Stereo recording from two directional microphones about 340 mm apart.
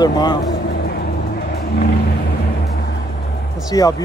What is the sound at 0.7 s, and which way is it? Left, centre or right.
Vehicle, left.